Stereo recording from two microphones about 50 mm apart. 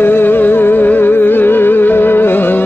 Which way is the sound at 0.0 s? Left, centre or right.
Left.